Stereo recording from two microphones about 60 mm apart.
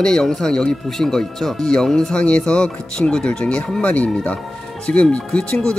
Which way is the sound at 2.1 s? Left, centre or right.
Centre.